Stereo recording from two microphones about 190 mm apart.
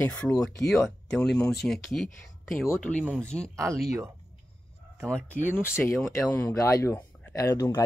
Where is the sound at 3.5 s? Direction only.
15° right (ahead or behind).